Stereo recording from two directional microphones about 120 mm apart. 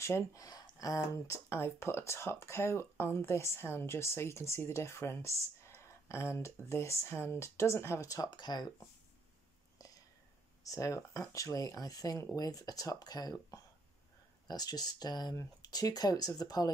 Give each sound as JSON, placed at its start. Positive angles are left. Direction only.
{"t": 0.0, "sound": "speech", "side_deg": 25}
{"t": 10.6, "sound": "speech", "side_deg": 30}